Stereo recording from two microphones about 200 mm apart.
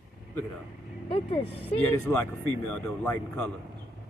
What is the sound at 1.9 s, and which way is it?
Speech, 10° left (ahead or behind).